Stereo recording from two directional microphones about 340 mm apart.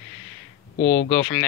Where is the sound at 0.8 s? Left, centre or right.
Left.